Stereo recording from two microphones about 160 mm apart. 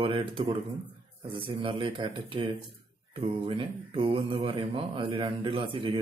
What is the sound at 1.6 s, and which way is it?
Speech, 30° right (ahead or behind).